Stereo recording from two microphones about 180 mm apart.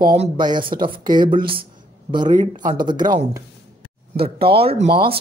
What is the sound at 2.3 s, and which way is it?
Speech, 45° right (ahead or behind).